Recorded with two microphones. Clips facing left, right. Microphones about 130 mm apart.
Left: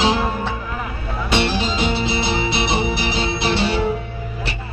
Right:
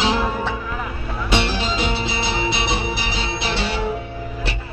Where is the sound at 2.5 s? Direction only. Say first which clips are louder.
Left 3 dB; 60° left (ahead or behind).